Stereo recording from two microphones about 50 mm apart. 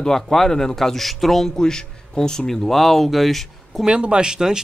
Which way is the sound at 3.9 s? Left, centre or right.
Centre.